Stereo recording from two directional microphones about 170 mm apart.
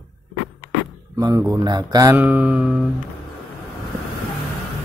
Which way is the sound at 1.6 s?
25° right (ahead or behind).